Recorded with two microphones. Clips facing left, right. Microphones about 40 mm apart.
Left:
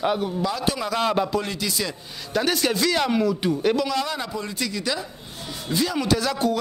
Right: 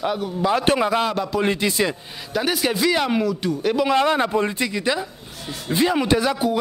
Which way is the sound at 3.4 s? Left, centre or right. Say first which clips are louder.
Even; centre.